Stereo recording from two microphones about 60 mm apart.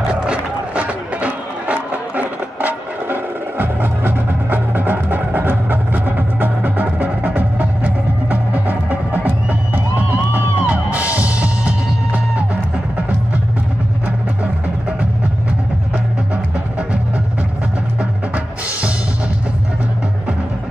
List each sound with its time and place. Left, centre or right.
0.0 s music: centre
18.3 s drum: right